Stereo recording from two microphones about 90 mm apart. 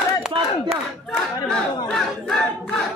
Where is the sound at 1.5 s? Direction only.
5° left (ahead or behind).